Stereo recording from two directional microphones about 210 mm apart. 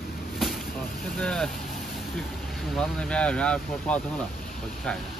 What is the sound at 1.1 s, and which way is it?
Speech, centre (ahead or behind).